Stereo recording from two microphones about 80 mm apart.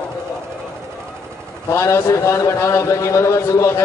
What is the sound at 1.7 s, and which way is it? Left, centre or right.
A man's voice, left.